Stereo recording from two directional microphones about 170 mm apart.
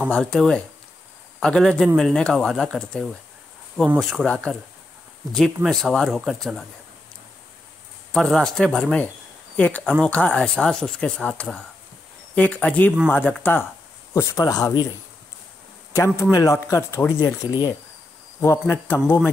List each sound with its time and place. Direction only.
0.0 s speech: 5° left (ahead or behind)
3.7 s speech: 10° right (ahead or behind)
4.0 s speech: centre (ahead or behind)
8.1 s a man's voice: 5° left (ahead or behind); by 14.9 s 20° left (ahead or behind)
15.9 s a man's voice: 15° left (ahead or behind)
17.5 s speech: 25° left (ahead or behind)
18.4 s a man's voice: 15° left (ahead or behind)